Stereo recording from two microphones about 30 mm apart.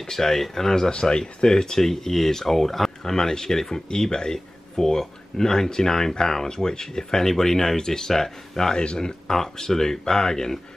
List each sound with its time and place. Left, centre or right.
0.0 s speech: centre
8.7 s speech: left
9.4 s speech: centre